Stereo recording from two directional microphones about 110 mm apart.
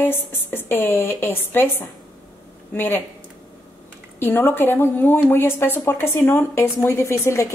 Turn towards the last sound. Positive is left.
turn(degrees=25)  # may be behind; listen again after turning